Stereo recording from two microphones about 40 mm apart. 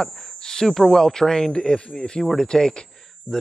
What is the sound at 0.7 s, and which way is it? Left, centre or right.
Speech, centre.